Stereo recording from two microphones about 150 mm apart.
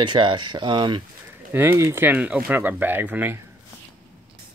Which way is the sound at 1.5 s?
15° right (ahead or behind).